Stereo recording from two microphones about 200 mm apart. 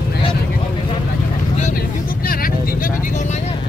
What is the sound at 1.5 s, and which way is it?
Vehicle, 45° left (ahead or behind).